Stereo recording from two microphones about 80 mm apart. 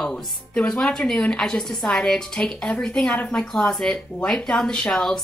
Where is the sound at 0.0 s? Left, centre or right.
Centre.